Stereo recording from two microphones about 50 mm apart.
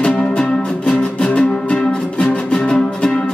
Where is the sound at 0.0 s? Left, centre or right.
Left.